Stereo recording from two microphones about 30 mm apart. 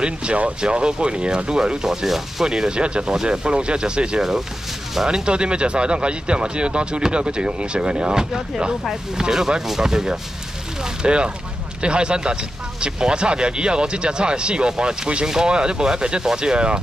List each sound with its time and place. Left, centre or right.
0.0 s speech: right; by 2.0 s centre
2.0 s speech: centre
2.4 s speech: right
11.0 s speech: right